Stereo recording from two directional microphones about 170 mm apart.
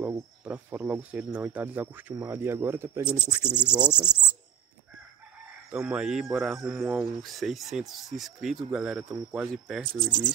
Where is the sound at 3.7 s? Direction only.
25° right (ahead or behind).